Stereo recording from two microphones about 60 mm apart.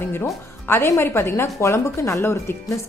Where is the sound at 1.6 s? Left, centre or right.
Left.